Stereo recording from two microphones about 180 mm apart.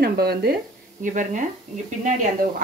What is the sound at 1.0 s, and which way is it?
Speech, 45° right (ahead or behind).